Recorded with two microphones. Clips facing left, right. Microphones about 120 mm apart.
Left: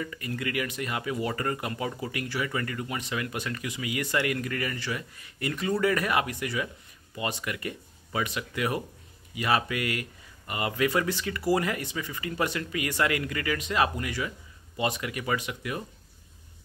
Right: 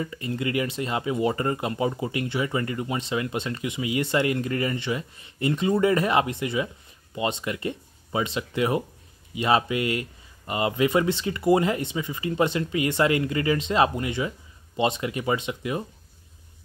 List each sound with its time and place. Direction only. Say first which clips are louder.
0.0 s speech: right 4 dB; 25° right (ahead or behind)